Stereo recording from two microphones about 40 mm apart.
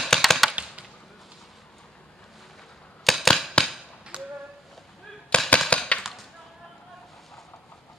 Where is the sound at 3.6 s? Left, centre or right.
Left.